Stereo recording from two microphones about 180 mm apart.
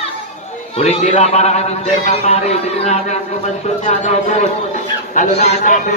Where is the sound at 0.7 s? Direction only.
35° left (ahead or behind).